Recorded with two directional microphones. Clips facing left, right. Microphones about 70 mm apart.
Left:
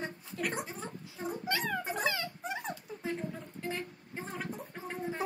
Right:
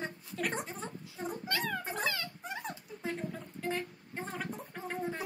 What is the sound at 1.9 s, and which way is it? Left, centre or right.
Music, centre.